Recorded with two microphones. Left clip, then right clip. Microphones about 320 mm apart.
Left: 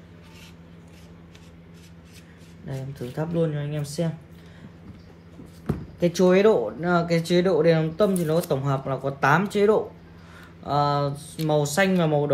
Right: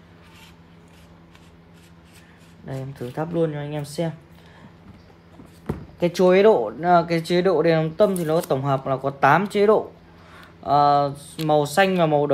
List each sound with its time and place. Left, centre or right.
2.6 s speech: right
5.9 s speech: right